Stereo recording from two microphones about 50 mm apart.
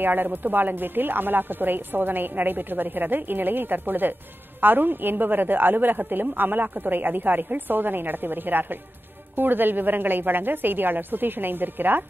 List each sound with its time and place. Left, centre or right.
0.0 s a woman's voice: right